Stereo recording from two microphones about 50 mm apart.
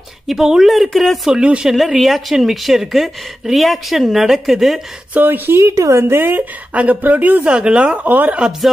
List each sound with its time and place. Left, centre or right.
0.3 s speech: centre
1.3 s speech: centre
1.7 s speech: centre
5.1 s speech: right
5.6 s a woman's voice: right
6.0 s a woman's voice: right
6.7 s speech: right
7.4 s speech: right
8.1 s speech: right